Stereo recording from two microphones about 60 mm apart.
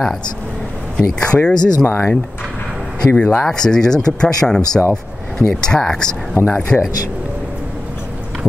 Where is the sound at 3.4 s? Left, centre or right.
Centre.